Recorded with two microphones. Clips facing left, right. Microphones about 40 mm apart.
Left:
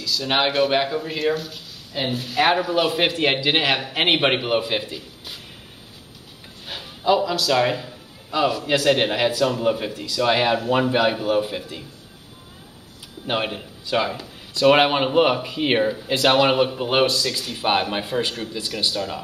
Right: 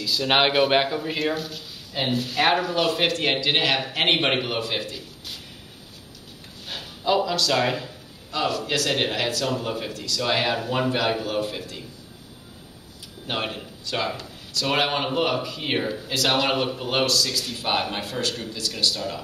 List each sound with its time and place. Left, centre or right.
0.0 s speech: centre
6.7 s a sound: centre
7.1 s speech: centre
13.3 s speech: centre
14.5 s a man's voice: left
16.3 s a man's voice: centre